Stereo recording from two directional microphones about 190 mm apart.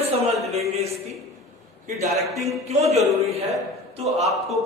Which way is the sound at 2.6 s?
35° right (ahead or behind).